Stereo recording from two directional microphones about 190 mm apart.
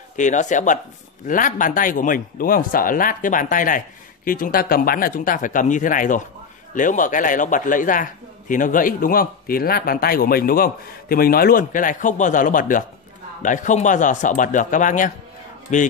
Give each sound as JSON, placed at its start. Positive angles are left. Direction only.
{"t": 0.1, "sound": "a man's voice", "side_deg": 40}